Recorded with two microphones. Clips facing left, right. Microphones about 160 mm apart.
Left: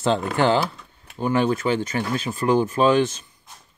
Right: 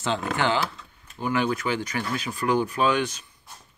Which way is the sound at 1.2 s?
30° left (ahead or behind).